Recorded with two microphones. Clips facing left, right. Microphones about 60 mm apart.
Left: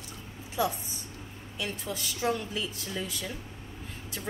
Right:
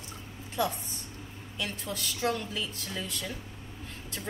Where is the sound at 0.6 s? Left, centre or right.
Centre.